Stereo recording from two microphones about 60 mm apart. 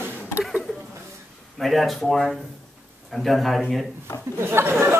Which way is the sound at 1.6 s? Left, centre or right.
Centre.